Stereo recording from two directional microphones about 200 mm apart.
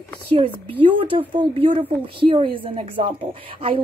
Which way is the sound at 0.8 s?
25° right (ahead or behind).